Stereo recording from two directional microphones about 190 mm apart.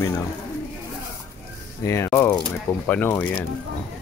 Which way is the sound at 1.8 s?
15° left (ahead or behind).